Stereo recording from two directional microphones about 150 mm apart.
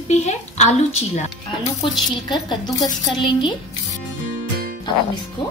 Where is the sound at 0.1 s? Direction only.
50° left (ahead or behind).